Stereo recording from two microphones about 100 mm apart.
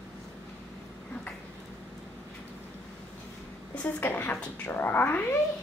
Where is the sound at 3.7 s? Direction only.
15° left (ahead or behind).